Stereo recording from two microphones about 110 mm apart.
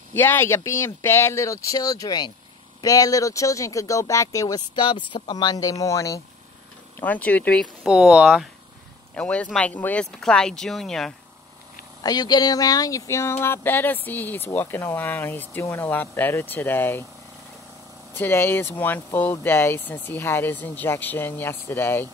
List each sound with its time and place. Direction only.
0.1 s speech: 20° left (ahead or behind)
7.0 s speech: 15° left (ahead or behind)
7.8 s speech: 10° right (ahead or behind)
9.1 s speech: 10° left (ahead or behind)
12.0 s speech: 35° left (ahead or behind); by 17.0 s 20° left (ahead or behind)
18.1 s speech: 20° left (ahead or behind)